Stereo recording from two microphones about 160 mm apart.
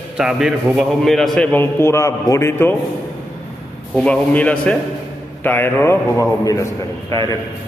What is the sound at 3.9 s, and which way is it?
A man's voice, 5° left (ahead or behind).